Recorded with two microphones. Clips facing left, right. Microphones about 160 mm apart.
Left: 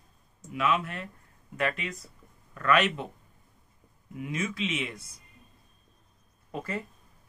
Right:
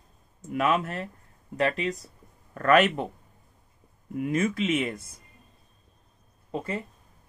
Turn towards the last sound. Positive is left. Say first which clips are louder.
# right 3 dB
turn(degrees=-25)  # may be behind; listen again after turning